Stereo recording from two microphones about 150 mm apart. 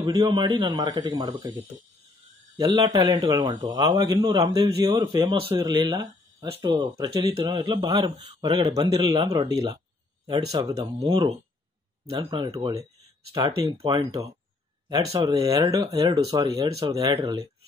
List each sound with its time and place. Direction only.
0.0 s a man's voice: 30° right (ahead or behind)
11.1 s a man's voice: 40° right (ahead or behind); by 17.5 s 25° right (ahead or behind)